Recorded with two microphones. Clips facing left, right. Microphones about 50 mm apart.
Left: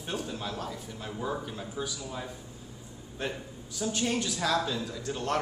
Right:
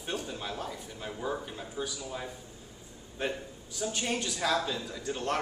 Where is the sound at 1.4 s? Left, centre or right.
Centre.